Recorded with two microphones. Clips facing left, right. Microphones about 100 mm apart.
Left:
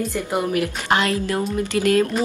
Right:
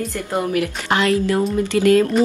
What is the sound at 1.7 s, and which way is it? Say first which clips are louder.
Speech: right 4 dB; 30° right (ahead or behind).